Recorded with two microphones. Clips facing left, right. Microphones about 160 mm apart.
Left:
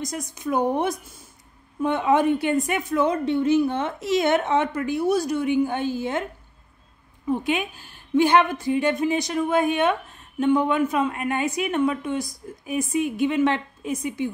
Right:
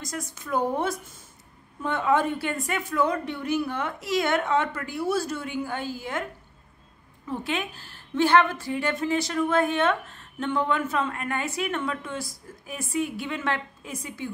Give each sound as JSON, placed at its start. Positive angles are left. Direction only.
{"t": 0.0, "sound": "a woman's voice", "side_deg": 15}
{"t": 7.2, "sound": "a woman's voice", "side_deg": 15}